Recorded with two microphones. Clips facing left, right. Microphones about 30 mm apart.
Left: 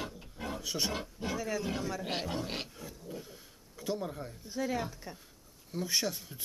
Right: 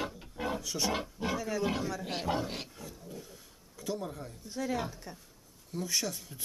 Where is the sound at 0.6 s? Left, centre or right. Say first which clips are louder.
Even; centre.